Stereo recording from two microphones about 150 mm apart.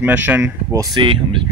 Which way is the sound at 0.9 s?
35° right (ahead or behind).